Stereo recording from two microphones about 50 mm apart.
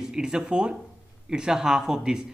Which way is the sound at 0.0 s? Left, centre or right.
Centre.